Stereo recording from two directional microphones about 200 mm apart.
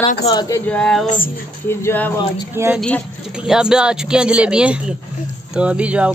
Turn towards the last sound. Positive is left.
turn(degrees=-5)  # may be behind; listen again after turning